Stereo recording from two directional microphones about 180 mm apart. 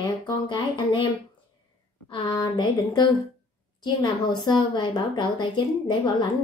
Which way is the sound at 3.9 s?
25° left (ahead or behind).